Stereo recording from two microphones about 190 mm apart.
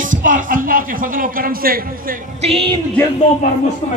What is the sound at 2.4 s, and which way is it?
Speech, 30° right (ahead or behind).